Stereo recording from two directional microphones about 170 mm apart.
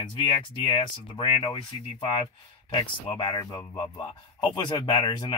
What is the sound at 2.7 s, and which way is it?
Speech, 30° left (ahead or behind).